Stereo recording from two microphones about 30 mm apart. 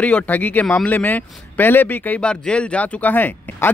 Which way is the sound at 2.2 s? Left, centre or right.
Left.